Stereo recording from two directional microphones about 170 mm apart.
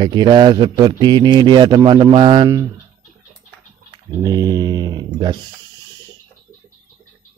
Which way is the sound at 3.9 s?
20° right (ahead or behind).